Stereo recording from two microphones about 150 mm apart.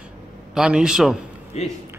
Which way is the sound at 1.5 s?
45° left (ahead or behind).